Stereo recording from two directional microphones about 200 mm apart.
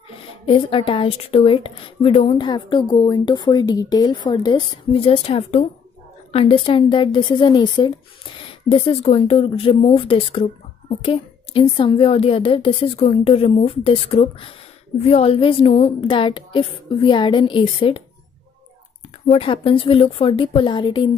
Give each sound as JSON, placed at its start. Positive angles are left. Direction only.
{"t": 0.5, "sound": "speech", "side_deg": 25}
{"t": 19.2, "sound": "speech", "side_deg": 30}